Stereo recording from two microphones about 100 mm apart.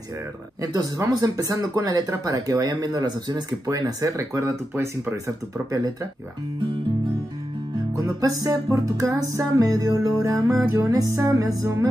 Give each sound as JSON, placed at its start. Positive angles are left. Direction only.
{"t": 0.6, "sound": "speech", "side_deg": -35}
{"t": 7.9, "sound": "speech", "side_deg": -35}